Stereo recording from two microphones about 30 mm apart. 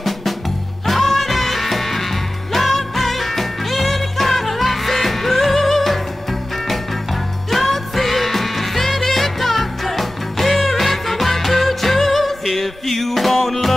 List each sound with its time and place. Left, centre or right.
0.8 s music: centre
7.5 s music: centre